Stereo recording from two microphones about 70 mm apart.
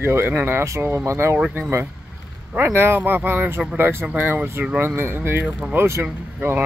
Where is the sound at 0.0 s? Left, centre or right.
Right.